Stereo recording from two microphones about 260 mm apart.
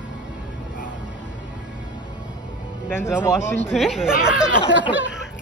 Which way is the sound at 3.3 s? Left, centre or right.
Centre.